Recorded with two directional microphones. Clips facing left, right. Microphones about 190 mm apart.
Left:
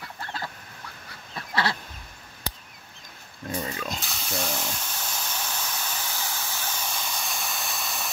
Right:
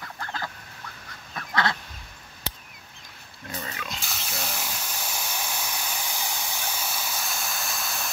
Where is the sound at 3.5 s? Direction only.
35° left (ahead or behind).